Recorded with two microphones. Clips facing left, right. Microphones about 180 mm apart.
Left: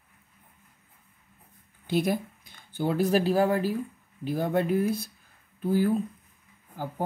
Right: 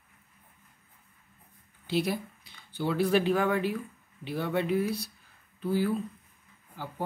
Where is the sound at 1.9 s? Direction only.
50° left (ahead or behind).